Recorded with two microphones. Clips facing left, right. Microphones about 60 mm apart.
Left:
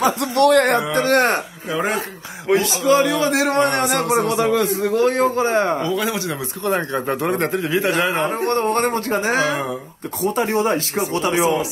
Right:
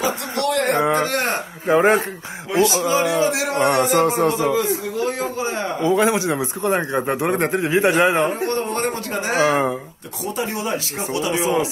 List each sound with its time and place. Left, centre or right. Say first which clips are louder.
0.0 s a sound: left 6 dB; left
0.7 s speech: right 1 dB; right
1.0 s speech: left 5 dB; left
1.7 s speech: right 7 dB; right
2.6 s a man's voice: right 5 dB; right
3.2 s a man's voice: left 2 dB; left
5.9 s a man's voice: right 5 dB; right
8.3 s speech: left 3 dB; left
9.4 s speech: right 3 dB; right
10.2 s speech: left 6 dB; left